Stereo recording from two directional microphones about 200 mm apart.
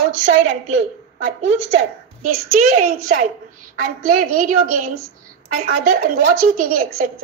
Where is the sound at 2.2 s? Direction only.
40° right (ahead or behind).